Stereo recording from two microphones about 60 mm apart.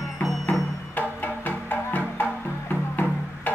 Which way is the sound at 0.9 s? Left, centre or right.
Left.